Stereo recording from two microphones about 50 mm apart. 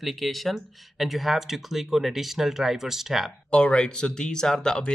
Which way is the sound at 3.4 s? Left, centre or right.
Centre.